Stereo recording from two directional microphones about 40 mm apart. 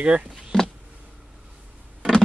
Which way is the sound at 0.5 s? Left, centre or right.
Centre.